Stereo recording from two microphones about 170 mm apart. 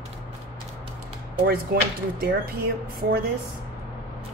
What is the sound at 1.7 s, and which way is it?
Speech, 65° right (ahead or behind).